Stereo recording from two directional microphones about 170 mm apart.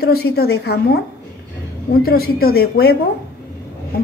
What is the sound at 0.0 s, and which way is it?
A woman's voice, 65° left (ahead or behind).